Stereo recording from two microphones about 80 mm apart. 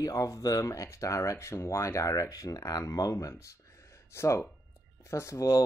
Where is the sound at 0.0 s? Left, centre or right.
Left.